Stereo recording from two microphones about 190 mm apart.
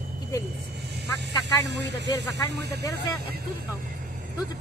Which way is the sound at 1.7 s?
65° right (ahead or behind).